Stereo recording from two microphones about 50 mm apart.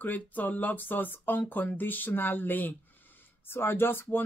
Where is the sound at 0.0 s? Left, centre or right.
Left.